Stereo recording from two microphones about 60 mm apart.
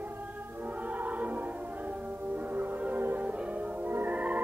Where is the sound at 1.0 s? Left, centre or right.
Right.